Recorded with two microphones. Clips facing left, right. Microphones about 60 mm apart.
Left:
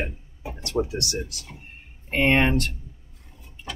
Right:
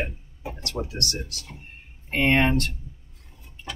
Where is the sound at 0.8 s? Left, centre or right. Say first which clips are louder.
Left 6 dB; centre.